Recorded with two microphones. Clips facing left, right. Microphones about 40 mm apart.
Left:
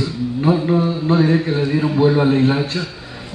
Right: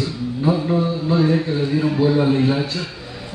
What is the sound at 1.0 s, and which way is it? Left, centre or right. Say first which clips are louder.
A man's voice: left 2 dB; left.